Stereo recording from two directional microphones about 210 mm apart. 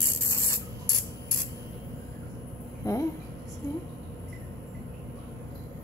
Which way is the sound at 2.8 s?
15° left (ahead or behind).